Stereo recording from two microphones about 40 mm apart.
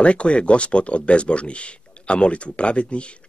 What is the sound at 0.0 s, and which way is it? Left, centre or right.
Speech, left.